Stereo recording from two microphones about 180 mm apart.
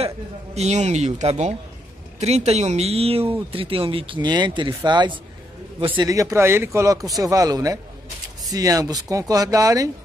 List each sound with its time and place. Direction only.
0.6 s a man's voice: 40° right (ahead or behind); by 9.8 s 20° right (ahead or behind)